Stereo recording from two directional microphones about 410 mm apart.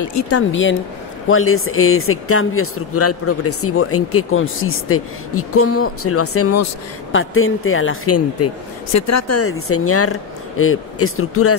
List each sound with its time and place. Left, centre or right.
0.0 s speech: left